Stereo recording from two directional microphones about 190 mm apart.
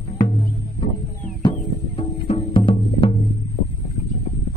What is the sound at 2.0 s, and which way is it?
Music, 30° left (ahead or behind).